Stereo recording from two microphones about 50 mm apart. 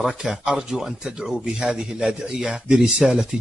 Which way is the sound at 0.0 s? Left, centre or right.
Centre.